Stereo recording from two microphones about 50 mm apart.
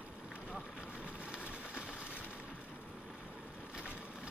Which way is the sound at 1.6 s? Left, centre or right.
Left.